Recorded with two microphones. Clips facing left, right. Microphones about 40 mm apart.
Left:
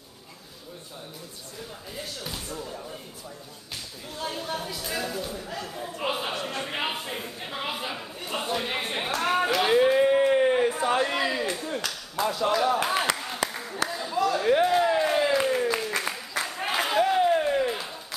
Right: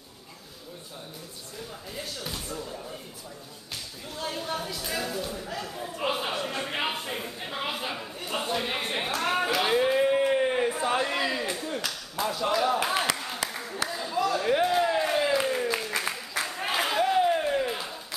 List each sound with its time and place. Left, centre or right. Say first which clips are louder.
2.0 s speech: even; centre
4.1 s speech: even; centre
10.3 s a sound: left 3 dB; centre